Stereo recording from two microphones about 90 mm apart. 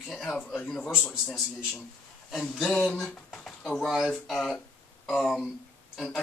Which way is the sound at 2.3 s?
5° left (ahead or behind).